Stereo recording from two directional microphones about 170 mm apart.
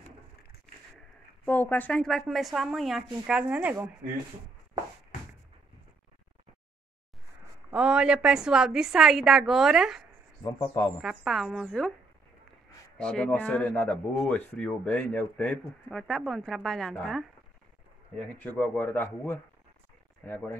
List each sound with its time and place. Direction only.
1.4 s a man's voice: 10° left (ahead or behind); by 3.7 s 10° right (ahead or behind)
7.7 s a man's voice: 5° right (ahead or behind)
10.4 s a man's voice: 25° left (ahead or behind)
11.0 s a man's voice: centre (ahead or behind)
12.9 s a man's voice: 5° left (ahead or behind)